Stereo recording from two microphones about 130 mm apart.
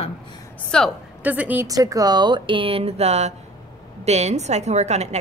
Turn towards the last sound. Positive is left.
turn(degrees=-60)  # may be behind; listen again after turning